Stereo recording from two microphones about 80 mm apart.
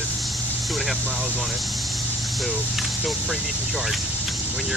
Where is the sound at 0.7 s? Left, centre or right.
Centre.